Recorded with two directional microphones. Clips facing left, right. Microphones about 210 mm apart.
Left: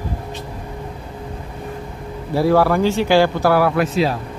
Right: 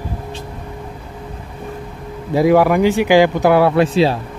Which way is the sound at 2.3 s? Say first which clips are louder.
Right 3 dB; 15° right (ahead or behind).